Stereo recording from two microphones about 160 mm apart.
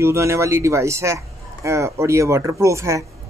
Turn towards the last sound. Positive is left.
turn(degrees=-20)  # may be behind; listen again after turning